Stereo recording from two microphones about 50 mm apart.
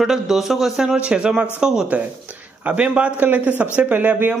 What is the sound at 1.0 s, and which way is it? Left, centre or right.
Speech, right.